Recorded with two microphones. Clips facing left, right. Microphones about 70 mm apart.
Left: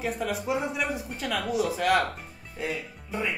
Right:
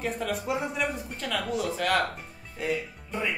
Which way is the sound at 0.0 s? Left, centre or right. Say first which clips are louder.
Left 1 dB; centre.